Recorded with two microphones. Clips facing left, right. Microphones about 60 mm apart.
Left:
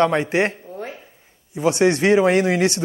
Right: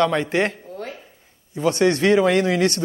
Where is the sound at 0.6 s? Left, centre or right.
Centre.